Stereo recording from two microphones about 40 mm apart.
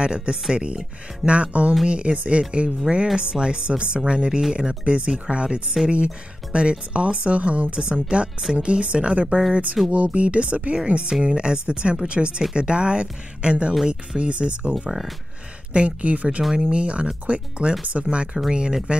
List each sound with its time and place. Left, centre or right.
0.0 s speech: right